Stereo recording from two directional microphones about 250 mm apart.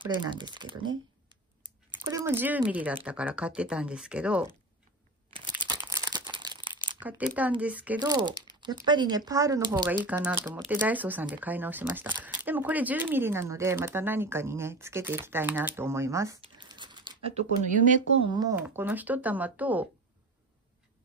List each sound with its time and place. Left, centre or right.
0.0 s speech: centre
2.0 s speech: centre
5.6 s crumpling: centre
7.0 s speech: centre; by 17.9 s right
18.3 s speech: centre